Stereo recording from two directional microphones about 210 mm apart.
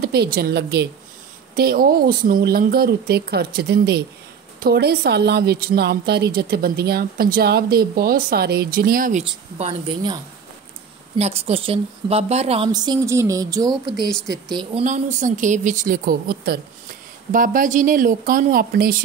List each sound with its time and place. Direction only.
0.0 s a woman's voice: 50° right (ahead or behind)
9.2 s a woman's voice: 25° right (ahead or behind)
13.9 s speech: centre (ahead or behind)
14.3 s speech: 20° right (ahead or behind); by 19.0 s 45° right (ahead or behind)